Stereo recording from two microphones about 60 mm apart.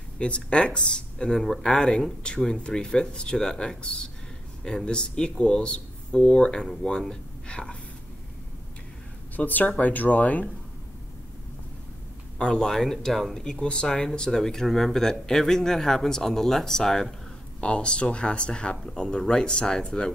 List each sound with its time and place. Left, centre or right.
0.2 s speech: centre
9.4 s speech: left
12.4 s speech: centre
17.6 s speech: centre